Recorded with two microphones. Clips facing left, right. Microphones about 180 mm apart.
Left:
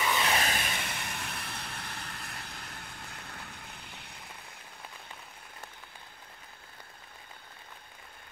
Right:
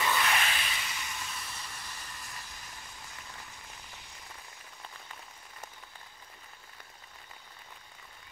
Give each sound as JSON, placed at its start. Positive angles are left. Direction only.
{"t": 0.2, "sound": "vehicle", "side_deg": 35}